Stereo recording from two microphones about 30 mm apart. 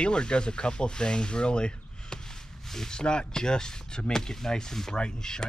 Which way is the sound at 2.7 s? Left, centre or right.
Centre.